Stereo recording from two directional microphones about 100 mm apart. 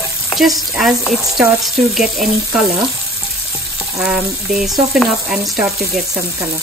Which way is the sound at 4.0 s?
5° right (ahead or behind).